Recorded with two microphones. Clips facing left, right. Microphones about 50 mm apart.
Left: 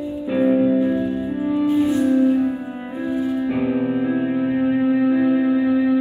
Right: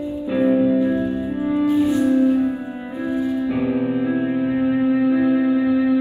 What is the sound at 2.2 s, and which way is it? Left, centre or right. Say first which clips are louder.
Music: even; left.